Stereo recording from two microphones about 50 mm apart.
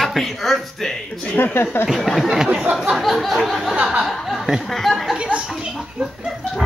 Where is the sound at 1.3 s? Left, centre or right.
Left.